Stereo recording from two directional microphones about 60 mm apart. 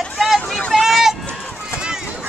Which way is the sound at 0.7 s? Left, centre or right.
Centre.